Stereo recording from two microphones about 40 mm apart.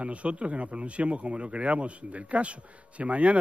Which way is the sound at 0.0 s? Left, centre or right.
Right.